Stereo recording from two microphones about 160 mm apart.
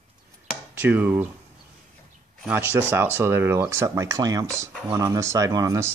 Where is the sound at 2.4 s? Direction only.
10° right (ahead or behind).